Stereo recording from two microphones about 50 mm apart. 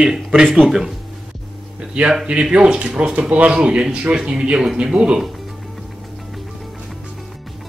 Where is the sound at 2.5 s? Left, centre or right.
Right.